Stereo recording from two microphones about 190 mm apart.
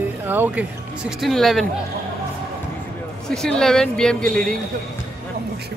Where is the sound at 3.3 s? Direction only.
5° left (ahead or behind).